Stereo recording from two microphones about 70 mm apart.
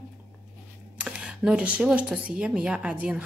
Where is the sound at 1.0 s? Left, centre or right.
Centre.